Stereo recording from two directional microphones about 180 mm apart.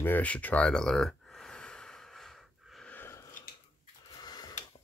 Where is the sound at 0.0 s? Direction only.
10° left (ahead or behind).